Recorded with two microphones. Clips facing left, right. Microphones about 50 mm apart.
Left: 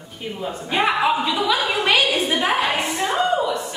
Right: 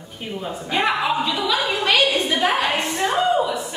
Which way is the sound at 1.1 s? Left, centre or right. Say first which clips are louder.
Left 1 dB; centre.